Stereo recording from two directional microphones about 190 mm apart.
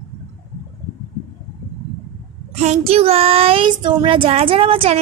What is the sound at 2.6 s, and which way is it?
Child singing, 35° right (ahead or behind).